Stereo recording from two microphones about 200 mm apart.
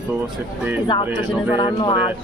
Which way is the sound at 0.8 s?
25° left (ahead or behind).